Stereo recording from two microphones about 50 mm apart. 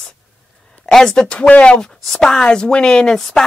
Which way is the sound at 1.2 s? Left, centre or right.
Left.